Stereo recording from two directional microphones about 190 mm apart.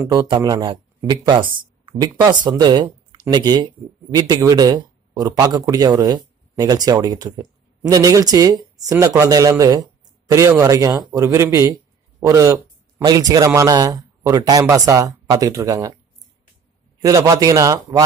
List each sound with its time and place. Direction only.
0.0 s a man's voice: 20° right (ahead or behind)
17.0 s a man's voice: 15° right (ahead or behind)